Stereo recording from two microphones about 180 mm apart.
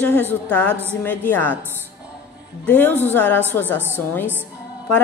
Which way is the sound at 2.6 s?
10° left (ahead or behind).